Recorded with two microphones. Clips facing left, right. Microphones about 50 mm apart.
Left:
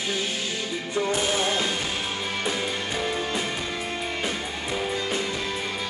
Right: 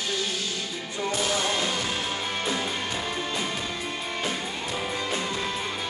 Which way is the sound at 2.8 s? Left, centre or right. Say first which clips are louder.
Left 3 dB; left.